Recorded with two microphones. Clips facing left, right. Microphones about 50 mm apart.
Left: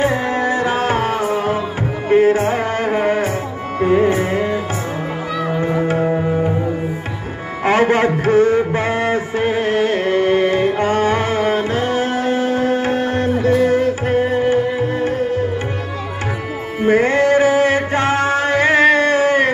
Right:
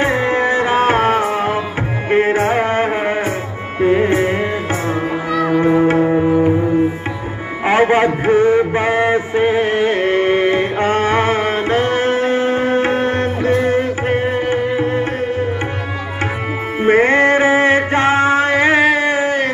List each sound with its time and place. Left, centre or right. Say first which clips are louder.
0.0 s music: right 2 dB; right
5.6 s music: right 5 dB; right
7.6 s a sound: right 1 dB; centre; by 13.5 s right
13.6 s music: left 1 dB; right
16.8 s music: right 2 dB; right
18.8 s a sound: left 1 dB; centre